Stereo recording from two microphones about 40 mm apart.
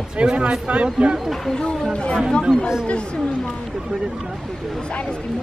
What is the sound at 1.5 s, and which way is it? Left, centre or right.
Speech, centre.